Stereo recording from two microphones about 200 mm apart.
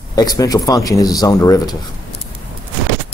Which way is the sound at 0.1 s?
20° left (ahead or behind).